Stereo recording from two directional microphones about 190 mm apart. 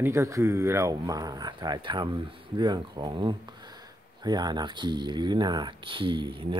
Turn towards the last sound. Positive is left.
turn(degrees=-25)  # may be behind; listen again after turning